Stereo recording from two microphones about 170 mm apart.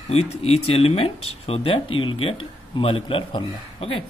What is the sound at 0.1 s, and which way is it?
Speech, 35° left (ahead or behind).